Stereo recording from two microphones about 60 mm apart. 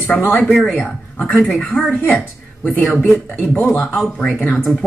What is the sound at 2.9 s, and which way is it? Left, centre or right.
Speech, centre.